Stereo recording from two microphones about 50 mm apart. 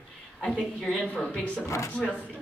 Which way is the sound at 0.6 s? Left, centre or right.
Centre.